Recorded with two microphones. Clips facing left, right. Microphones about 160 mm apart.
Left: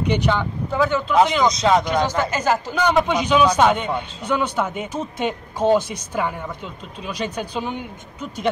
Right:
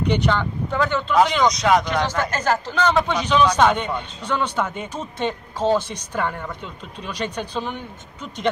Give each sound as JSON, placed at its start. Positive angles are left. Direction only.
{"t": 0.1, "sound": "speech", "side_deg": 10}
{"t": 1.5, "sound": "speech", "side_deg": 25}
{"t": 1.9, "sound": "speech", "side_deg": 15}